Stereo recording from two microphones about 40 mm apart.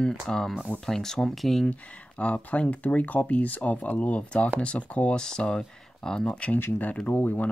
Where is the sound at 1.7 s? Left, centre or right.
Left.